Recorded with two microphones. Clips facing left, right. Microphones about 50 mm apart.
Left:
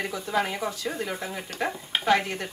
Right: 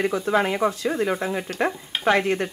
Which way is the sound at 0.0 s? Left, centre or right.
Right.